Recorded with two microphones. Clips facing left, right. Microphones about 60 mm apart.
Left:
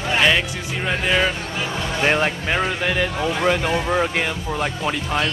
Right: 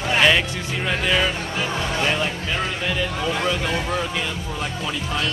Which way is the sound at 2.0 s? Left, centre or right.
Left.